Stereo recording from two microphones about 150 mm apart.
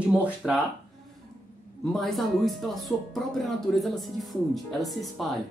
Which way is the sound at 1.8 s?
Centre (ahead or behind).